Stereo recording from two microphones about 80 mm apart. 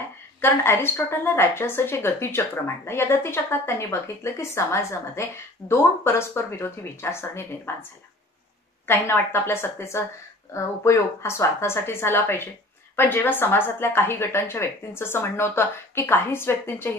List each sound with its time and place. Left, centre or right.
0.4 s a woman's voice: left
8.8 s a woman's voice: left